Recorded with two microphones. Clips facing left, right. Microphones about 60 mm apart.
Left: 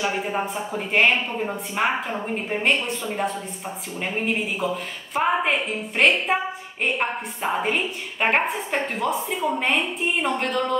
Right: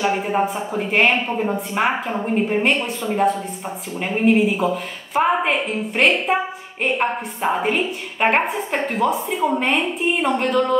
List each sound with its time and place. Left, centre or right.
0.0 s speech: centre
0.8 s a woman's voice: centre
1.9 s speech: centre
3.0 s a woman's voice: centre